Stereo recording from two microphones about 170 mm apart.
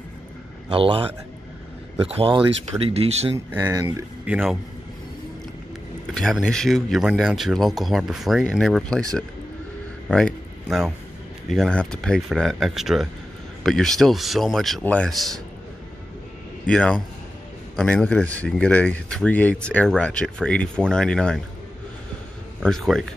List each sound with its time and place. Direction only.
0.7 s speech: 30° right (ahead or behind)
3.3 s speech: 10° right (ahead or behind)
6.1 s speech: 5° left (ahead or behind)
10.0 s a sound: centre (ahead or behind)
11.5 s speech: 5° left (ahead or behind)
16.6 s speech: 5° left (ahead or behind)
22.6 s speech: centre (ahead or behind)